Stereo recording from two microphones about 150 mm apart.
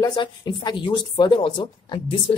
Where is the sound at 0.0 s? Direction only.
30° left (ahead or behind).